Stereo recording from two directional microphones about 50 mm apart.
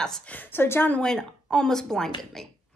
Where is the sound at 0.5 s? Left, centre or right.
Left.